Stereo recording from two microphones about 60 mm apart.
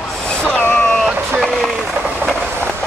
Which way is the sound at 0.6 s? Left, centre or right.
Left.